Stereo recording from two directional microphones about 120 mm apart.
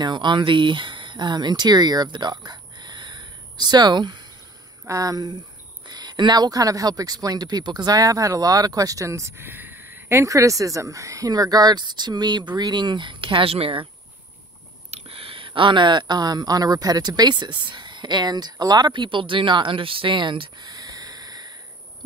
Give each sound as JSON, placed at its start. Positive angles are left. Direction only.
{"t": 0.0, "sound": "speech", "side_deg": -40}
{"t": 14.9, "sound": "speech", "side_deg": -55}